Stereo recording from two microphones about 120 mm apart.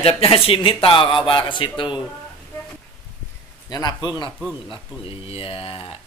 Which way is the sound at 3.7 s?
35° left (ahead or behind).